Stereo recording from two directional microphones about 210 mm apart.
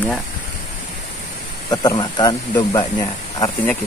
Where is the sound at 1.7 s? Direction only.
20° left (ahead or behind).